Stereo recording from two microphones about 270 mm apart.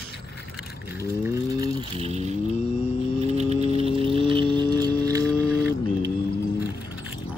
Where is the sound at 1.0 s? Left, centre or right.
Centre.